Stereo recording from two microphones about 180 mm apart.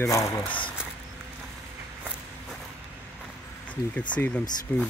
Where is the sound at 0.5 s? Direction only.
25° left (ahead or behind).